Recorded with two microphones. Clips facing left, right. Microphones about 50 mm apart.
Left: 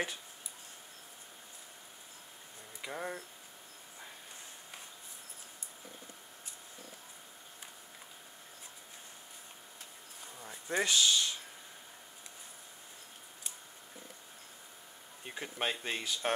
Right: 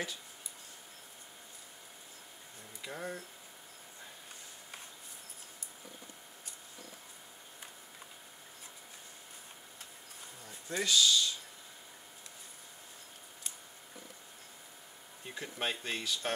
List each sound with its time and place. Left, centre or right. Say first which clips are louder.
2.9 s speech: left 1 dB; centre
10.4 s a sound: left 4 dB; left
10.8 s speech: right 1 dB; left
15.2 s speech: left 1 dB; left